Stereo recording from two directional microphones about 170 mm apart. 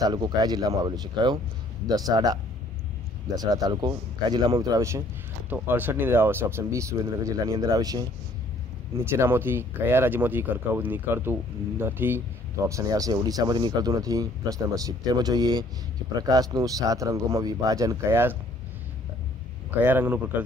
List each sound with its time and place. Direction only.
0.0 s speech: 25° right (ahead or behind)
19.7 s speech: 10° right (ahead or behind)